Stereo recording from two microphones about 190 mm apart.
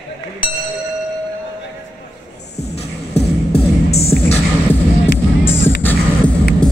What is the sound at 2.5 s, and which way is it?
Music, 35° left (ahead or behind).